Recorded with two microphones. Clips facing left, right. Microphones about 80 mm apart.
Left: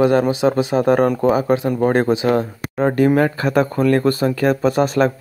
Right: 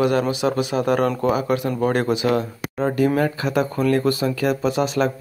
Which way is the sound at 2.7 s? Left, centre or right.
Left.